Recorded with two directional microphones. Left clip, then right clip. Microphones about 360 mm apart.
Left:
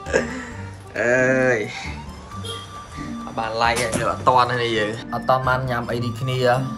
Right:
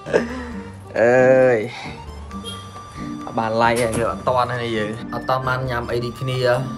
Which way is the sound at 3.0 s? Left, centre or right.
Centre.